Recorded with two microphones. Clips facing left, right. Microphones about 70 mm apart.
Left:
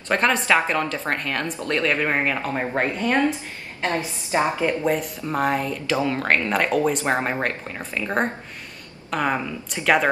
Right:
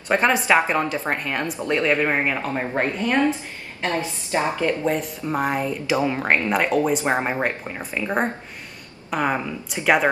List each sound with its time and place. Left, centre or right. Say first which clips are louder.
0.1 s a woman's voice: right 1 dB; centre
3.8 s a woman's voice: even; left
4.8 s a woman's voice: even; centre
7.1 s a woman's voice: right 1 dB; centre
9.1 s a woman's voice: right 1 dB; centre